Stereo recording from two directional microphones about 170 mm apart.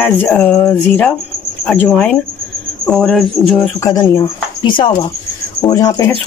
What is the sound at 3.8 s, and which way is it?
Speech, 20° left (ahead or behind).